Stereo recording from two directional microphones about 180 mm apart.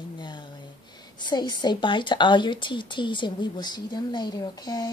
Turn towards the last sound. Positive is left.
turn(degrees=25)  # may be behind; listen again after turning